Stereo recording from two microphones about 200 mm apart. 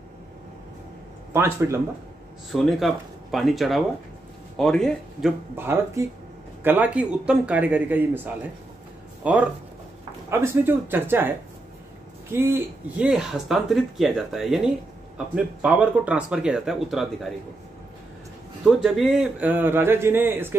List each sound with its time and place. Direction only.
1.3 s a man's voice: 10° right (ahead or behind)
2.5 s speech: centre (ahead or behind)
5.6 s a man's voice: 10° right (ahead or behind)
9.2 s a man's voice: 5° right (ahead or behind)
18.6 s a man's voice: 5° right (ahead or behind)